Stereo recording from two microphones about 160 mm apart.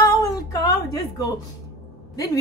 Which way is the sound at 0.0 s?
20° left (ahead or behind).